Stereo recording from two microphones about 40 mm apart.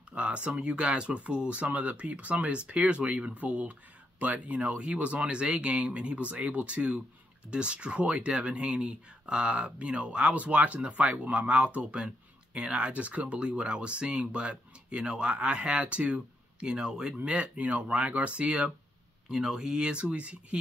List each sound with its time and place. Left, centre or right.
0.1 s speech: right
16.6 s speech: right
19.3 s speech: centre; by 20.5 s right